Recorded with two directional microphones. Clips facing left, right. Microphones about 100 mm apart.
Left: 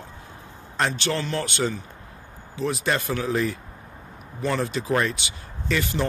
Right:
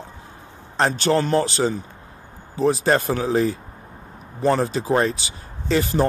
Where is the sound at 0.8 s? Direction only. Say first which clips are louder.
Right 6 dB; 40° right (ahead or behind).